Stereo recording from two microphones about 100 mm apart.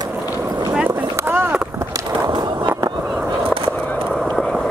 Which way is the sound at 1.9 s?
40° right (ahead or behind).